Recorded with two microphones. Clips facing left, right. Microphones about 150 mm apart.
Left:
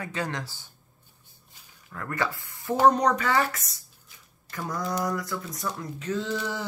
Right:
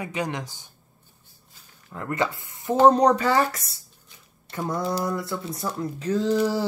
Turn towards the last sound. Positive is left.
turn(degrees=-35)  # may be behind; listen again after turning